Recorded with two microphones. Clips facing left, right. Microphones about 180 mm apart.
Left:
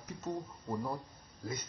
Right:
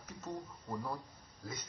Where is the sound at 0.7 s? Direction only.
20° left (ahead or behind).